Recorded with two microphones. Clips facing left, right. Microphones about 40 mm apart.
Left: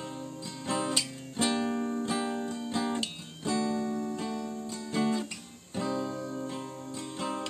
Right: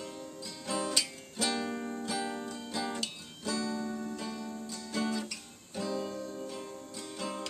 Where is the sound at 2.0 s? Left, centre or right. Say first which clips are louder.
Left 4 dB; left.